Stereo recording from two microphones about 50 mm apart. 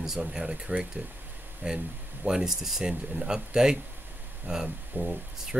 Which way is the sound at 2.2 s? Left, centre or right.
Centre.